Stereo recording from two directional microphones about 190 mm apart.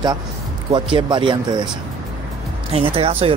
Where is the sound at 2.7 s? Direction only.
30° right (ahead or behind).